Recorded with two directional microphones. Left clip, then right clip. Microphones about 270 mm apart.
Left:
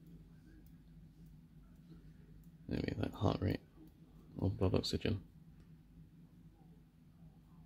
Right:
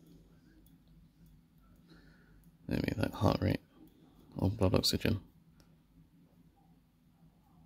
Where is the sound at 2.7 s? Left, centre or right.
Centre.